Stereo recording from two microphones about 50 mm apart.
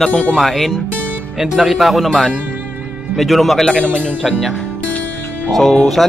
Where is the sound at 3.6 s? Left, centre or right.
Left.